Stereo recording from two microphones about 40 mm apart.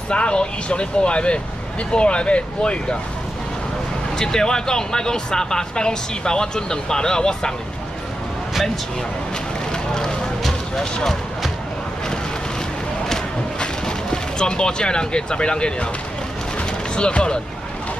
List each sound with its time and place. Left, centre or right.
0.1 s speech: left
4.2 s speech: centre
9.7 s a sound: centre
10.8 s speech: centre
13.6 s speech: centre
16.5 s a sound: left